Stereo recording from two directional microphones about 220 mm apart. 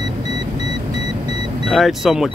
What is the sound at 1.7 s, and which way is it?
Speech, centre (ahead or behind).